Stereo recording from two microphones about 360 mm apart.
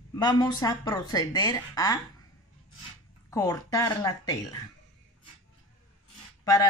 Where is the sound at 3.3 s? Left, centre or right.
Centre.